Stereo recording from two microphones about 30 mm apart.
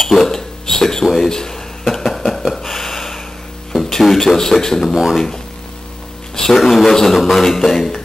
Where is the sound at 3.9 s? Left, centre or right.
Centre.